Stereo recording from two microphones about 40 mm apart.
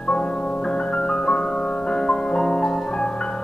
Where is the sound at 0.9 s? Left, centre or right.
Centre.